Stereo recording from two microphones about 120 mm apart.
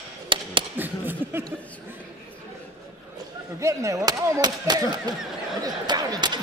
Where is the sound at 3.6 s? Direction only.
25° right (ahead or behind).